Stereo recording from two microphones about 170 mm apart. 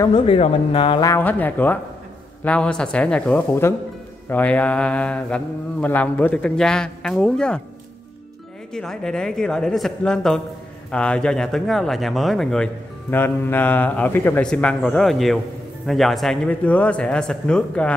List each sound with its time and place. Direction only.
0.1 s speech: 35° left (ahead or behind)
1.1 s mantra: 10° left (ahead or behind)
8.7 s speech: 5° left (ahead or behind)
13.1 s mantra: 10° left (ahead or behind)
15.9 s speech: centre (ahead or behind)